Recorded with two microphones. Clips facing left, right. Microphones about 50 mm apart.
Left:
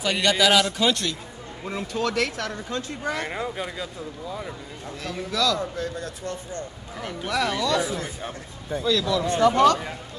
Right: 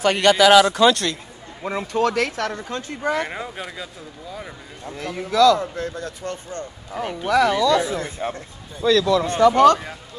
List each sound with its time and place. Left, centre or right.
0.0 s speech: right
1.6 s speech: right
3.4 s speech: centre
4.9 s speech: right
8.8 s speech: right